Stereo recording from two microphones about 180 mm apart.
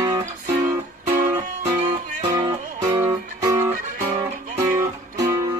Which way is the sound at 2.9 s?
20° right (ahead or behind).